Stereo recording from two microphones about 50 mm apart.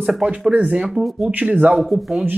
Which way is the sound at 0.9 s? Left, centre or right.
Centre.